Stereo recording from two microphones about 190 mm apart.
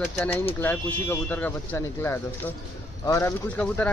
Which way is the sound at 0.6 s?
10° left (ahead or behind).